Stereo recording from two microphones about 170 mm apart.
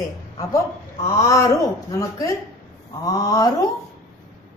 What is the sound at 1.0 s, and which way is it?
A woman's voice, 15° left (ahead or behind).